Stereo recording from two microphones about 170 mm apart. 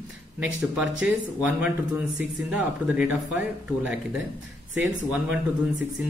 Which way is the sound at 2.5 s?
10° right (ahead or behind).